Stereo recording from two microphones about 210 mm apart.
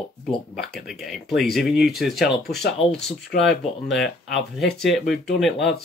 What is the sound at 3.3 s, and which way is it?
Speech, 45° left (ahead or behind).